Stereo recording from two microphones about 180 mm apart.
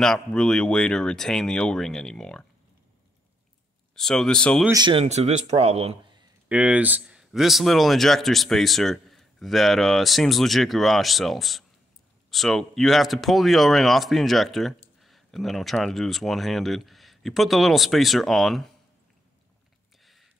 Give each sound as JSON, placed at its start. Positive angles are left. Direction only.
{"t": 0.0, "sound": "speech", "side_deg": 5}
{"t": 3.9, "sound": "speech", "side_deg": 5}
{"t": 4.6, "sound": "speech", "side_deg": -25}
{"t": 5.0, "sound": "a man's voice", "side_deg": -40}
{"t": 6.5, "sound": "speech", "side_deg": -10}